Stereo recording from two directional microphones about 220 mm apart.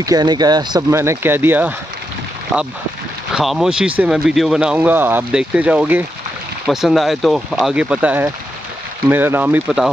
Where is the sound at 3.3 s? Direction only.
Centre (ahead or behind).